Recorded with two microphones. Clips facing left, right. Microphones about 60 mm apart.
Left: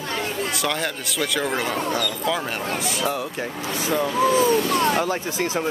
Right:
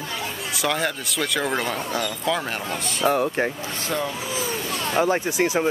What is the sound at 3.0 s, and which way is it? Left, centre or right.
Speech, right.